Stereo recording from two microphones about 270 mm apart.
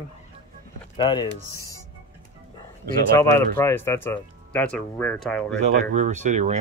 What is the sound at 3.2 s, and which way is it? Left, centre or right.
Speech, centre.